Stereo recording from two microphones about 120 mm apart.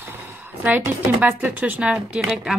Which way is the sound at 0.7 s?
10° right (ahead or behind).